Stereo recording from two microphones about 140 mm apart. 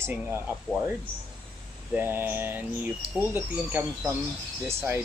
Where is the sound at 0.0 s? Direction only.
15° right (ahead or behind).